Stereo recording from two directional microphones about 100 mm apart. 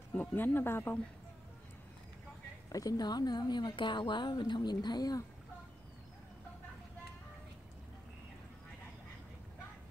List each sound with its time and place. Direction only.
0.1 s speech: 15° left (ahead or behind)
2.7 s a woman's voice: 35° left (ahead or behind)